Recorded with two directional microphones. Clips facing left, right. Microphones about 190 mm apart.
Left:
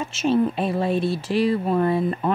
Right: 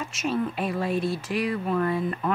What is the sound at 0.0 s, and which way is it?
Speech, 25° left (ahead or behind).